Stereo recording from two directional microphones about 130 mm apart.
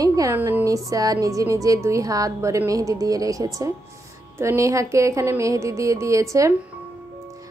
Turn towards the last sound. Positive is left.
turn(degrees=-25)  # may be behind; listen again after turning